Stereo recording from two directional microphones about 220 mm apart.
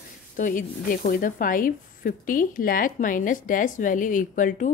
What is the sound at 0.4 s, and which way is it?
Speech, 35° left (ahead or behind).